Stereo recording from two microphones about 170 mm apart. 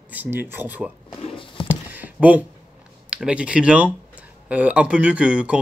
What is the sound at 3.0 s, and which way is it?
Speech, 5° right (ahead or behind).